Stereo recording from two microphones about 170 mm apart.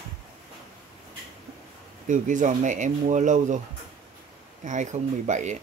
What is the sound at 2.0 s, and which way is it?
Speech, 50° right (ahead or behind).